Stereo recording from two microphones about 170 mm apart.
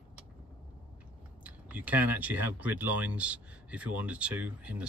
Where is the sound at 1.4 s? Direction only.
10° right (ahead or behind).